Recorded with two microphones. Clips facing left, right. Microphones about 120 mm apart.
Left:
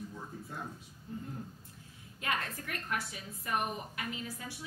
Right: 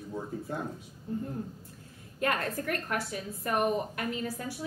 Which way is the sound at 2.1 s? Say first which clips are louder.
Right 6 dB; 50° right (ahead or behind).